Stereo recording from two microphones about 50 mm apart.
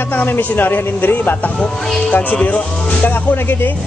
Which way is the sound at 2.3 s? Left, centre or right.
Left.